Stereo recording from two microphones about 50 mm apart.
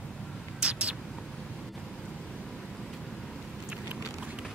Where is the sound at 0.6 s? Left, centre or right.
Right.